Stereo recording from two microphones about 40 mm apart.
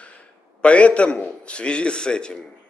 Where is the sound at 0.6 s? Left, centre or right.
Left.